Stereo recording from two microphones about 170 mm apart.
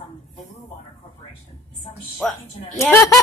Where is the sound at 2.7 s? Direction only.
15° left (ahead or behind).